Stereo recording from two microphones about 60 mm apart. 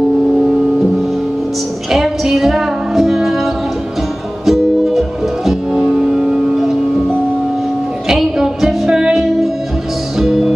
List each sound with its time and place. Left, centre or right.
1.9 s music: centre
4.5 s music: centre
8.1 s music: centre